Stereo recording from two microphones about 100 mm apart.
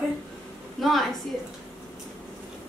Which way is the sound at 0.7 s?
Centre (ahead or behind).